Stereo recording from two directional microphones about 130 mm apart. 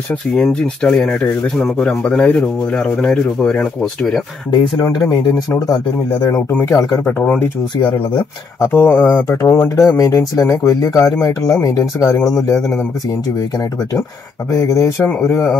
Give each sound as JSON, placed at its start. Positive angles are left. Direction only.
{"t": 0.4, "sound": "speech", "side_deg": 5}
{"t": 6.7, "sound": "speech", "side_deg": 25}
{"t": 7.1, "sound": "speech", "side_deg": 10}
{"t": 7.8, "sound": "speech", "side_deg": 40}
{"t": 8.5, "sound": "speech", "side_deg": 15}
{"t": 14.5, "sound": "speech", "side_deg": 25}